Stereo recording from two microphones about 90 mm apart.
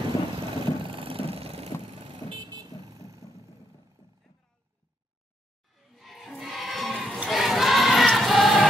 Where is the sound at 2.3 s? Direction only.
55° right (ahead or behind).